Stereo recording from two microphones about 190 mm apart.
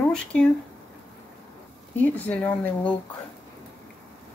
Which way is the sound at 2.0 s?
10° left (ahead or behind).